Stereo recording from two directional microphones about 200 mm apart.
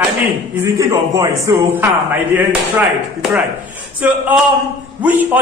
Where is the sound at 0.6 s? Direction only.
15° right (ahead or behind).